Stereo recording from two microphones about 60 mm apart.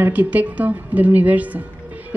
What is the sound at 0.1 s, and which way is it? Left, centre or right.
A woman's voice, right.